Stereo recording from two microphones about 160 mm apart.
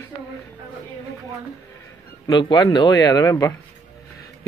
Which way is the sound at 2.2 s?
25° left (ahead or behind).